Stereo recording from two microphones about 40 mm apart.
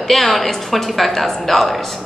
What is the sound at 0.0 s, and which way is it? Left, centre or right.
A woman's voice, centre.